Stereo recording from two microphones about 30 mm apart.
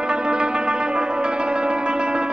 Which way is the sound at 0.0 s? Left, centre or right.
Right.